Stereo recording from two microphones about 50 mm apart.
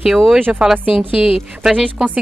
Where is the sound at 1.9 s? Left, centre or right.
Centre.